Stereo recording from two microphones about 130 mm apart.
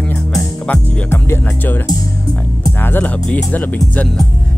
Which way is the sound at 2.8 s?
15° left (ahead or behind).